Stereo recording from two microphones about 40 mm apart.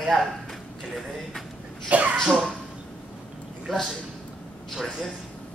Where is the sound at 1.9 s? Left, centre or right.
Right.